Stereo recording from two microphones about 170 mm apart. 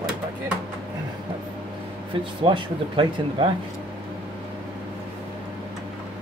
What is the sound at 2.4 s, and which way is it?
Speech, 30° right (ahead or behind).